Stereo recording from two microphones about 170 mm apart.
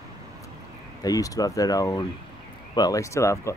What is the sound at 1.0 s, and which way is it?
Speech, 20° left (ahead or behind).